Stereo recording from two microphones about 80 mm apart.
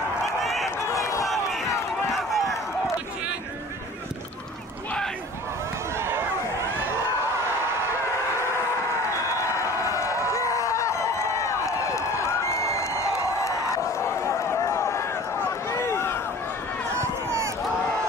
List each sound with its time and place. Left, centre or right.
0.2 s run: centre
0.7 s run: left
1.2 s a sound: centre
2.1 s run: centre
5.9 s run: right
9.3 s a sound: left
13.9 s run: left